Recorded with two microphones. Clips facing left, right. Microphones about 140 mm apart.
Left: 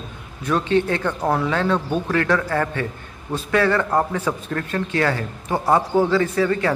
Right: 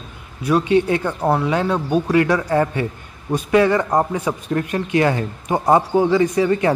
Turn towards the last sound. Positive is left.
turn(degrees=-20)  # may be behind; listen again after turning